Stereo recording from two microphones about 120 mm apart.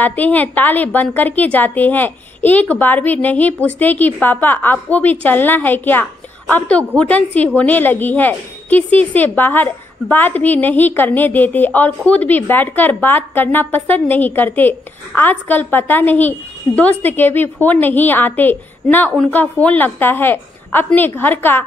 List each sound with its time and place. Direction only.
0.0 s a woman's voice: 15° left (ahead or behind)